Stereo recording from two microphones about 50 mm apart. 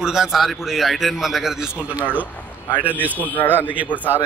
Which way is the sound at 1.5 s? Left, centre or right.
Centre.